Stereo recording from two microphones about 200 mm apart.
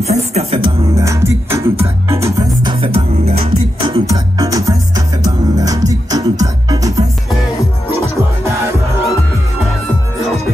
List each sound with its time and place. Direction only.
0.0 s music: 35° right (ahead or behind)
0.9 s music: 15° right (ahead or behind)
2.1 s music: 30° right (ahead or behind)
4.0 s music: 15° right (ahead or behind)